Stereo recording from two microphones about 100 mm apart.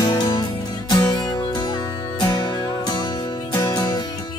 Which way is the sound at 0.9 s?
40° left (ahead or behind).